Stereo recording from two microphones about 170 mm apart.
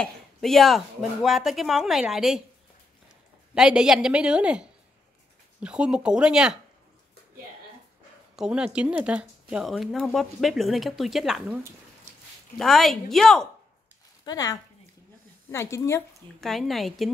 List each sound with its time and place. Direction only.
0.0 s speech: centre (ahead or behind)
3.5 s speech: 5° right (ahead or behind)
8.4 s speech: 5° right (ahead or behind)
14.2 s speech: 20° left (ahead or behind)
16.3 s speech: centre (ahead or behind)